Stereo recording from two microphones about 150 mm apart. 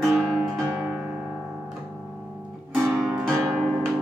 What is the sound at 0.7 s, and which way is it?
Music, 10° right (ahead or behind).